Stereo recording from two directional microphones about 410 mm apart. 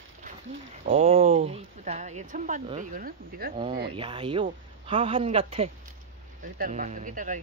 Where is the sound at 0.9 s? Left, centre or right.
Centre.